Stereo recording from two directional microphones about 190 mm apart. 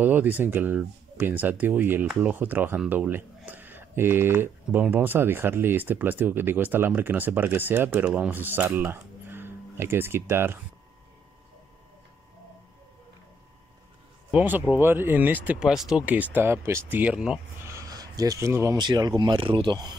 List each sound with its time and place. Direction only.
0.0 s speech: 10° right (ahead or behind)
14.3 s speech: 10° right (ahead or behind)
16.3 s speech: 15° right (ahead or behind)
17.7 s speech: 20° right (ahead or behind)